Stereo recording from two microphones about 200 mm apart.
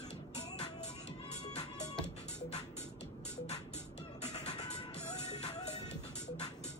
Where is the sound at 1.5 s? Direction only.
30° left (ahead or behind).